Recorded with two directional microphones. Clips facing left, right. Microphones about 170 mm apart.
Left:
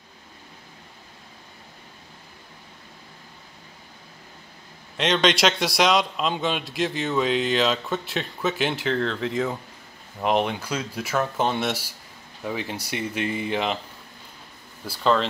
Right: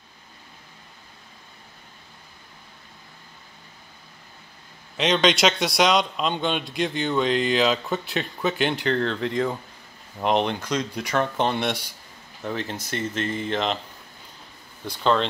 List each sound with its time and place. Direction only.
4.9 s a man's voice: centre (ahead or behind)
14.9 s a man's voice: centre (ahead or behind)